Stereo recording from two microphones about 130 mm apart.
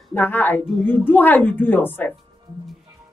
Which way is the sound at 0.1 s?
15° left (ahead or behind).